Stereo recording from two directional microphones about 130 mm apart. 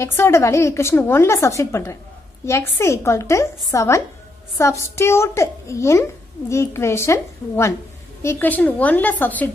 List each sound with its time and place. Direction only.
0.0 s a woman's voice: 20° left (ahead or behind)